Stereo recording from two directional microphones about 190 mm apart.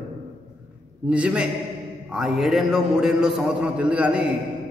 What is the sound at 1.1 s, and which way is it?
A man's voice, 5° right (ahead or behind).